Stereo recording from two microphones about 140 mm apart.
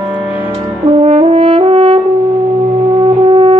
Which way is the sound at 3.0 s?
40° right (ahead or behind).